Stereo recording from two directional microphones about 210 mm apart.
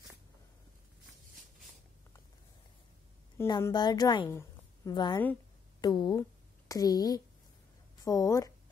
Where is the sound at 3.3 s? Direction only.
15° left (ahead or behind).